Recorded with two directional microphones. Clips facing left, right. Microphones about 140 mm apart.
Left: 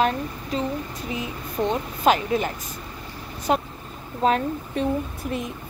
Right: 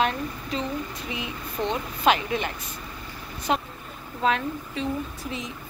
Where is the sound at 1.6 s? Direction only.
40° left (ahead or behind).